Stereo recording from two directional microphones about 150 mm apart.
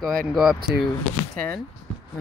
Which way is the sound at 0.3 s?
Centre (ahead or behind).